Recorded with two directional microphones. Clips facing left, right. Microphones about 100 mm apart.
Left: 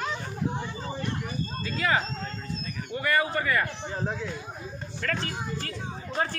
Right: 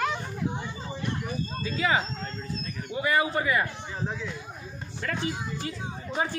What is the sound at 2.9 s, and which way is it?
Speech, 15° right (ahead or behind).